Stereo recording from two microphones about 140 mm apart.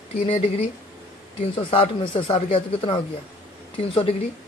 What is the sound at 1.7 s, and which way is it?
Speech, 40° left (ahead or behind).